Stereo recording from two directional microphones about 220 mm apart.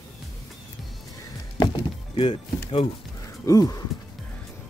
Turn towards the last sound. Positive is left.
turn(degrees=15)  # may be behind; listen again after turning